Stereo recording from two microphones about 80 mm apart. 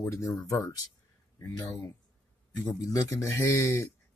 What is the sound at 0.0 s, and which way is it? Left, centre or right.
Speech, left.